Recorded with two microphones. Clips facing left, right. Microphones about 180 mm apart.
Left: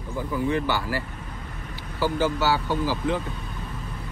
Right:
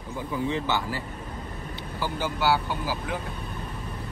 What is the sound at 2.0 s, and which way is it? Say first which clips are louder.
Speech: left 5 dB; 15° right (ahead or behind).